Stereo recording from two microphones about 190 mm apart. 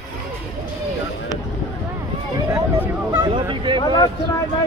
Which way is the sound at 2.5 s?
10° right (ahead or behind).